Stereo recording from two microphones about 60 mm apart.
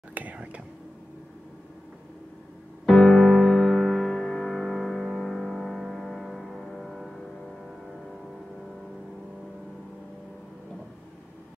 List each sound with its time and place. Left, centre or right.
0.1 s whispering: right
2.9 s music: centre